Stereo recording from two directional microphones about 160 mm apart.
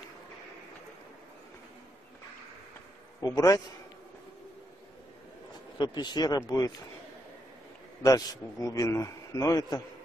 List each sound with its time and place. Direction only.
3.3 s a man's voice: 20° left (ahead or behind)
5.8 s a man's voice: 25° left (ahead or behind)
8.0 s a man's voice: 20° left (ahead or behind)